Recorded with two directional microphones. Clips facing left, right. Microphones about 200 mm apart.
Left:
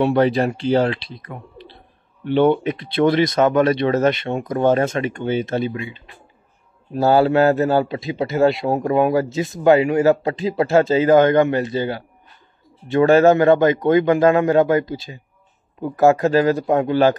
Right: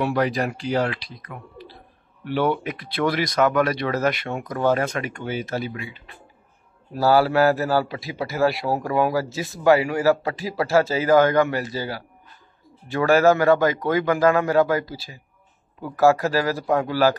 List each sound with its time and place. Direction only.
0.0 s a man's voice: 25° left (ahead or behind)